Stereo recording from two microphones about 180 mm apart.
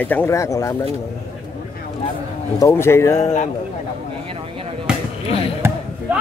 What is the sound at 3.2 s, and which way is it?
Speech, 40° left (ahead or behind).